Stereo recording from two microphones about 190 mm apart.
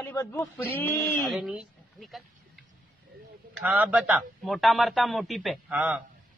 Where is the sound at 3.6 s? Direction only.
5° right (ahead or behind).